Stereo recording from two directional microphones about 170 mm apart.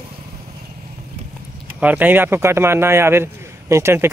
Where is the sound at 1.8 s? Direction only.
10° right (ahead or behind).